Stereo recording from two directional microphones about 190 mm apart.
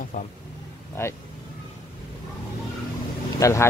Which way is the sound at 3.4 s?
15° left (ahead or behind).